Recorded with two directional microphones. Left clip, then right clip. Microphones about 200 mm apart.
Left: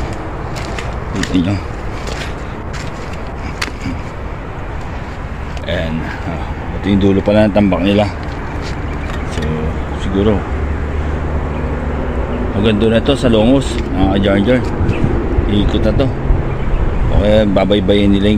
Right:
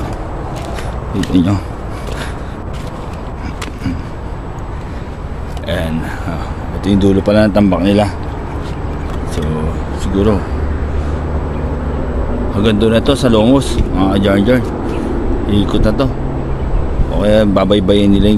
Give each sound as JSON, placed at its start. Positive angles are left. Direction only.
{"t": 1.3, "sound": "speech", "side_deg": -20}
{"t": 5.7, "sound": "speech", "side_deg": -10}
{"t": 12.5, "sound": "speech", "side_deg": -5}
{"t": 17.2, "sound": "speech", "side_deg": -10}